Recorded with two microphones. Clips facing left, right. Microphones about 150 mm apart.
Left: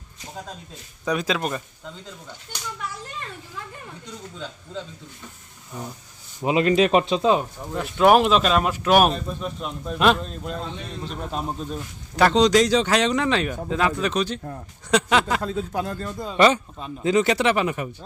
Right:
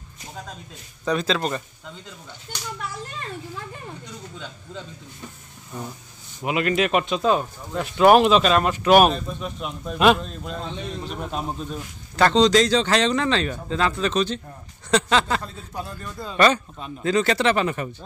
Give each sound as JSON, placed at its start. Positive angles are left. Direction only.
{"t": 1.0, "sound": "speech", "side_deg": 10}
{"t": 6.4, "sound": "speech", "side_deg": 30}
{"t": 7.7, "sound": "speech", "side_deg": 0}
{"t": 12.3, "sound": "speech", "side_deg": 15}
{"t": 15.4, "sound": "a man's voice", "side_deg": 90}
{"t": 16.3, "sound": "speech", "side_deg": 15}